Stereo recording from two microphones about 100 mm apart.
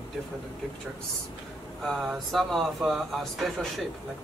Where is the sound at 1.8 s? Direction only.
Centre (ahead or behind).